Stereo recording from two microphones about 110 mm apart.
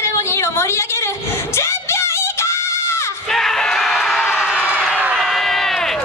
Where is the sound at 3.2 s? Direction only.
5° left (ahead or behind).